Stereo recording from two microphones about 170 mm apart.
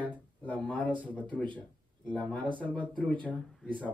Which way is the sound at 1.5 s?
10° left (ahead or behind).